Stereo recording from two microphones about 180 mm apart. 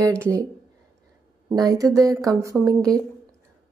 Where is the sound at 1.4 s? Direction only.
20° right (ahead or behind).